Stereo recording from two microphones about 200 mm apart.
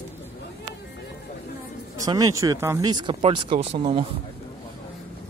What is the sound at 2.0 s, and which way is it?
Speech, 20° right (ahead or behind).